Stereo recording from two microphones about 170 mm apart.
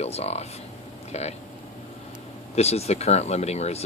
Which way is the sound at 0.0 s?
40° left (ahead or behind).